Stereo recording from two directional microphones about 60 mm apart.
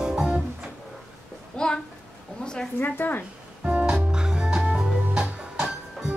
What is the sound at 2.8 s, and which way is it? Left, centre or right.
Speech, left.